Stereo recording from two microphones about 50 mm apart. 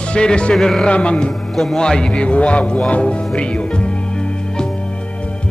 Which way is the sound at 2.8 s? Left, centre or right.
Left.